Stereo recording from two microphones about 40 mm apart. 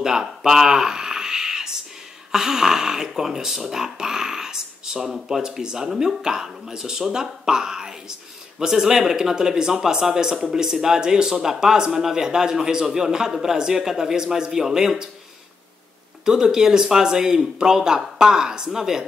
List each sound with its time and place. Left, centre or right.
0.0 s speech: centre
16.3 s speech: centre